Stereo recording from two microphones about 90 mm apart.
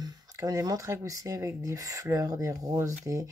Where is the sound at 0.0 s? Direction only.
40° right (ahead or behind).